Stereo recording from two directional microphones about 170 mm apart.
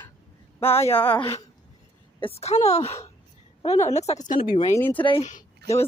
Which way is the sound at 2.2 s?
35° left (ahead or behind).